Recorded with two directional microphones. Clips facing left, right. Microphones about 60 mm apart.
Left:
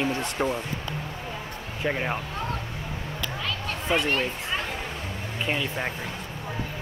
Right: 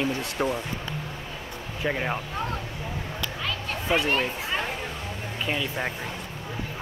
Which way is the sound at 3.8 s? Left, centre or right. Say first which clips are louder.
Right 1 dB; centre.